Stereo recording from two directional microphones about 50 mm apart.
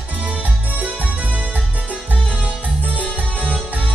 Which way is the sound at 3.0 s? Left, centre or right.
Right.